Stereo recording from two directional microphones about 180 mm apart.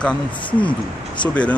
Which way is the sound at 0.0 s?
5° left (ahead or behind).